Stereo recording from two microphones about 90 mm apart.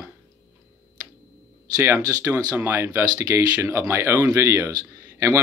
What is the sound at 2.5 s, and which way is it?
Speech, 25° right (ahead or behind).